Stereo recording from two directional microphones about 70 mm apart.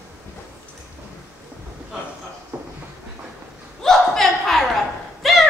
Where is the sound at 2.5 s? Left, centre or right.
Right.